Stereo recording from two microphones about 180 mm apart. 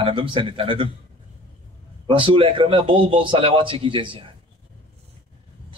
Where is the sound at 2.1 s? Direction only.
30° right (ahead or behind).